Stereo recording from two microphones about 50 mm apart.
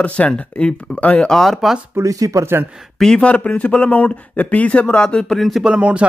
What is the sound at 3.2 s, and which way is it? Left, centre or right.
Speech, left.